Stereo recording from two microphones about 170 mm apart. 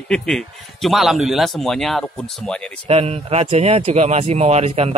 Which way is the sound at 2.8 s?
40° right (ahead or behind).